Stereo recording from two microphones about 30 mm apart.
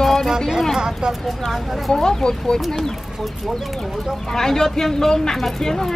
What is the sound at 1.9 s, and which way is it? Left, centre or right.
Speech, left.